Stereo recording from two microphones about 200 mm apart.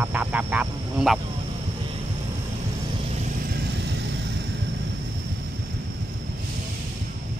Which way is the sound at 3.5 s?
55° right (ahead or behind).